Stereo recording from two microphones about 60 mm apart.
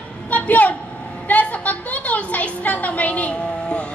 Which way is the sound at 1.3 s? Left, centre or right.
Left.